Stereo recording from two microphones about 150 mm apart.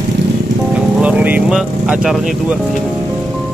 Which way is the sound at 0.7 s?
10° right (ahead or behind).